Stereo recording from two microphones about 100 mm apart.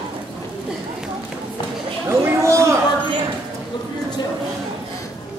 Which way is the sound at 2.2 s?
30° right (ahead or behind).